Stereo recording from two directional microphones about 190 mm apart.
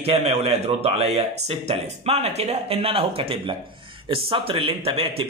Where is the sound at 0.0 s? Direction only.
30° right (ahead or behind).